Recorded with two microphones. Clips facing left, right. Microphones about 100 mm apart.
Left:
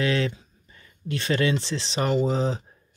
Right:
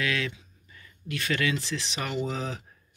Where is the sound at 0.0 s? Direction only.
30° left (ahead or behind).